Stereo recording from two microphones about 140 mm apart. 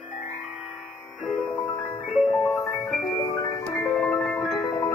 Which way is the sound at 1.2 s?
5° left (ahead or behind).